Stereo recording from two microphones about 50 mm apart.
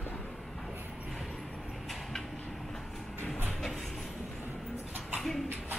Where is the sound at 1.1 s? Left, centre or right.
Centre.